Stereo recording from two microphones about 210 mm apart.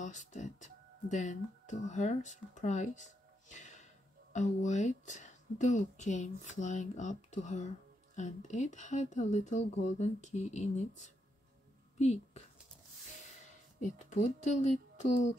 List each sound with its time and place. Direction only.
0.0 s a woman's voice: 35° left (ahead or behind)
13.7 s speech: 35° left (ahead or behind)